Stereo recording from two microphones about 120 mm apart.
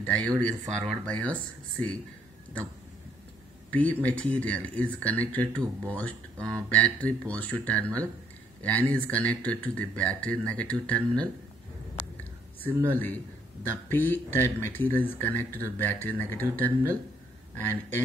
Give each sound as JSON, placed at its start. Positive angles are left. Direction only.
{"t": 0.0, "sound": "speech", "side_deg": 10}
{"t": 3.7, "sound": "speech", "side_deg": 15}
{"t": 12.2, "sound": "a sound", "side_deg": 15}
{"t": 13.8, "sound": "speech", "side_deg": 15}